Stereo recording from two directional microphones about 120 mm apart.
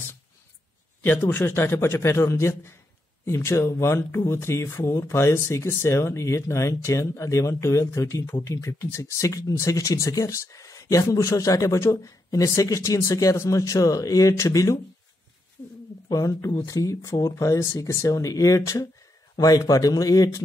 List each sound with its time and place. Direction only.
1.0 s speech: 15° left (ahead or behind)
16.1 s speech: 30° left (ahead or behind)